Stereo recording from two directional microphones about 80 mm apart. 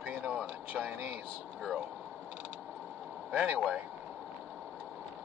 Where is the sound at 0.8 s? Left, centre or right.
Centre.